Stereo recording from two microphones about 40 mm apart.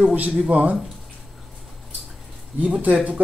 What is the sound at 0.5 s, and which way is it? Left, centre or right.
Speech, right.